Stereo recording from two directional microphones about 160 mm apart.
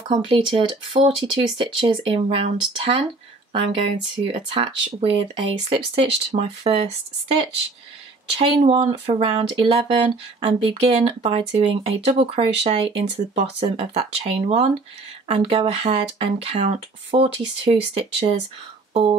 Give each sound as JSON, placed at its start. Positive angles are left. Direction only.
{"t": 0.1, "sound": "speech", "side_deg": -30}
{"t": 8.4, "sound": "speech", "side_deg": -35}